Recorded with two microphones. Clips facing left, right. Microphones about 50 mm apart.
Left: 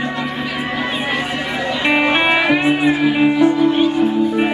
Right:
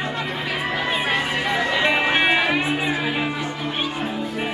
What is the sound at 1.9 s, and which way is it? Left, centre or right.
Music, left.